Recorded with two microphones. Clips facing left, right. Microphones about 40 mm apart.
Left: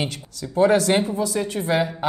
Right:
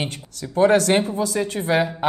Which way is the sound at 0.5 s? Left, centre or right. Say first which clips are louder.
Right 1 dB; right.